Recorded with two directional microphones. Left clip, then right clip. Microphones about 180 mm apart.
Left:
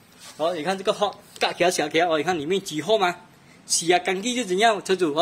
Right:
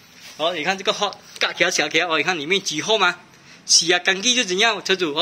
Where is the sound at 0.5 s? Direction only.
20° left (ahead or behind).